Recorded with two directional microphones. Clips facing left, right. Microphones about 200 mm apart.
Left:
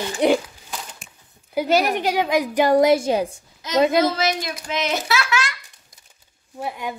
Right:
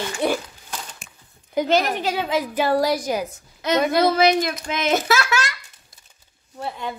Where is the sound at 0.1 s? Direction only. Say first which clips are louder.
Left 6 dB; 20° left (ahead or behind).